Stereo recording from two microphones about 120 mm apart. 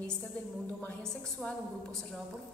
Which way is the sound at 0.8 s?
5° left (ahead or behind).